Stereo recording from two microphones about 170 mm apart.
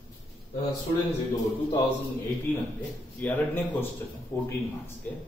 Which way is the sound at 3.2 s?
10° left (ahead or behind).